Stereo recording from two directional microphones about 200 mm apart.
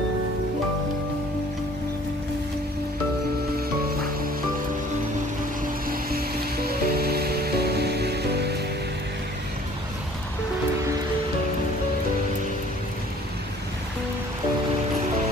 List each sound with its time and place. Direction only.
5.9 s music: 50° right (ahead or behind)